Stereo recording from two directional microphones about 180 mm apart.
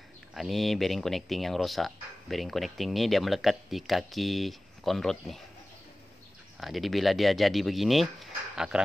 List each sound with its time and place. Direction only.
0.3 s speech: centre (ahead or behind)
6.6 s speech: centre (ahead or behind)